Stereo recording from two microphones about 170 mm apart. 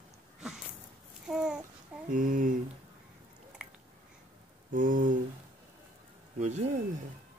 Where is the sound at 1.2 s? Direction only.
5° right (ahead or behind).